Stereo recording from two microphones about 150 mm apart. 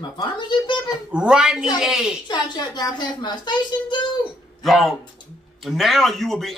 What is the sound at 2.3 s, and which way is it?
A child's voice, 30° left (ahead or behind).